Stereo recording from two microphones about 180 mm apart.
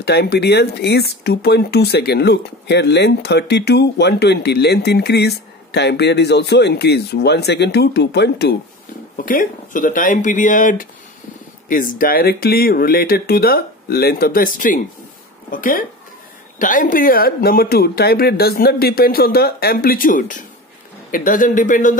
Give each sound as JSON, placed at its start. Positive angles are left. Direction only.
{"t": 0.0, "sound": "speech", "side_deg": 65}
{"t": 9.1, "sound": "speech", "side_deg": 50}